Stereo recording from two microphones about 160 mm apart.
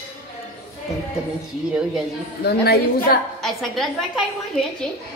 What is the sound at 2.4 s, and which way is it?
Speech, 80° left.